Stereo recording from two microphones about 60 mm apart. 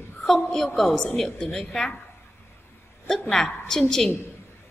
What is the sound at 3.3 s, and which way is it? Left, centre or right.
Speech, centre.